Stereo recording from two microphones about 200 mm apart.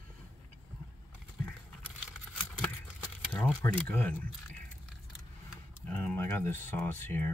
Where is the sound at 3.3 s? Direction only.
10° left (ahead or behind).